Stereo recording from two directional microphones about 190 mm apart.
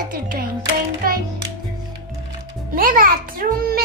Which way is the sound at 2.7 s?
45° right (ahead or behind).